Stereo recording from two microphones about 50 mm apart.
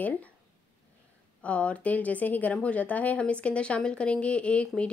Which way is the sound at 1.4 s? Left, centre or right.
Left.